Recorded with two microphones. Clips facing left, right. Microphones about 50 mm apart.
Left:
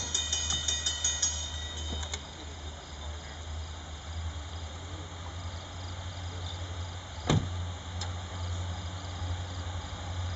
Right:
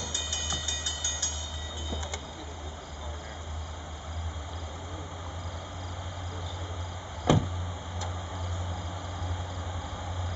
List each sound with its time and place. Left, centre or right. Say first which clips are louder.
0.0 s vehicle: right 1 dB; centre
7.3 s vehicle: right 5 dB; right